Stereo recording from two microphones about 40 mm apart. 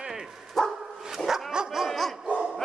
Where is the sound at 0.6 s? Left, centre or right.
Centre.